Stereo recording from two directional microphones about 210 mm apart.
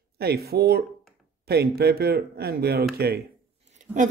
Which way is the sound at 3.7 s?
35° right (ahead or behind).